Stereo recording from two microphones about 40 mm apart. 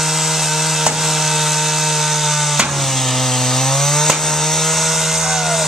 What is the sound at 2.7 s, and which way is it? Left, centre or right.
Chainsaw, centre.